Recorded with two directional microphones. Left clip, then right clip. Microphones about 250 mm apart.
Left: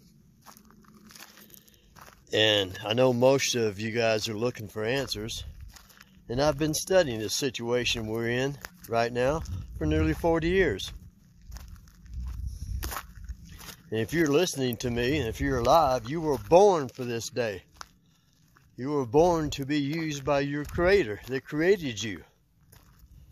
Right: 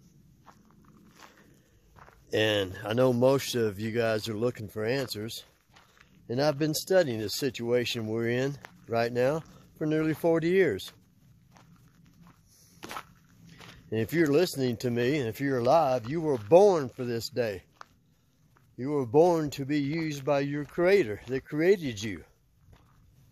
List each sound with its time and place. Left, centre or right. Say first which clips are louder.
0.5 s biting: left 4 dB; left
2.2 s speech: left 3 dB; centre
12.8 s a sound: left 2 dB; left
13.8 s speech: even; centre
18.8 s speech: even; centre